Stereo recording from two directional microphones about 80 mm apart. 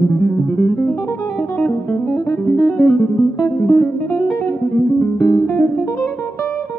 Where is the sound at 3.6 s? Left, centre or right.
Left.